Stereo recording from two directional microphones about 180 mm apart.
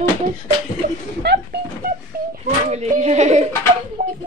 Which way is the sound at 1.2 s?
70° right (ahead or behind).